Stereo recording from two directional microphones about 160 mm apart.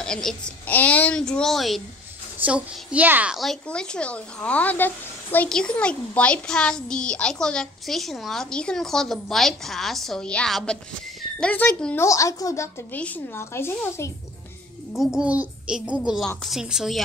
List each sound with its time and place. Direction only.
0.0 s a woman's voice: 5° left (ahead or behind); by 12.6 s 20° left (ahead or behind)
12.9 s speech: 10° left (ahead or behind)
14.9 s a woman's voice: 5° right (ahead or behind)